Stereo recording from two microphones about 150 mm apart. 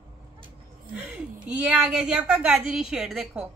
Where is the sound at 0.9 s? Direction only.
5° right (ahead or behind).